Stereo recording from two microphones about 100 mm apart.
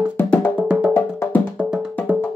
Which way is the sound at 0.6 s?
10° right (ahead or behind).